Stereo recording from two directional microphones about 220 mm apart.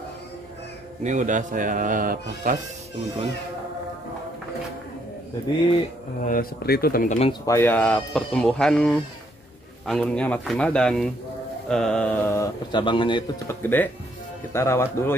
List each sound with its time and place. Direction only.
1.0 s speech: 35° right (ahead or behind)
6.2 s speech: 40° left (ahead or behind)
7.4 s speech: 10° left (ahead or behind)
13.6 s speech: 10° left (ahead or behind)